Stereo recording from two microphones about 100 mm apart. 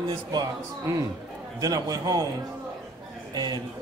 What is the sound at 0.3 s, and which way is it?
A man's voice, 40° right (ahead or behind).